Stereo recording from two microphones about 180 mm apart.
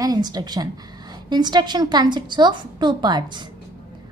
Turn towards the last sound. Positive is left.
turn(degrees=-25)  # may be behind; listen again after turning